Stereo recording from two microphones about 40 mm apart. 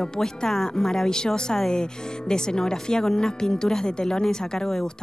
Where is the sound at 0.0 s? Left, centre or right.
Centre.